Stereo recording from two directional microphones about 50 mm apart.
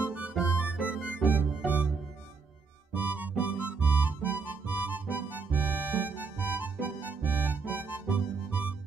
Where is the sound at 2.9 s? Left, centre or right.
Right.